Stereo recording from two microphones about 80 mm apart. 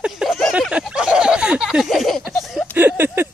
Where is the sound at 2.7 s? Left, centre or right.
Right.